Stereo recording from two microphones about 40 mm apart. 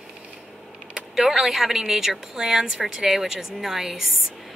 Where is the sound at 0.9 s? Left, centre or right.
Centre.